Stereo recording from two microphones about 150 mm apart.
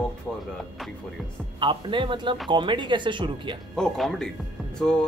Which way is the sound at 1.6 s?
35° right (ahead or behind).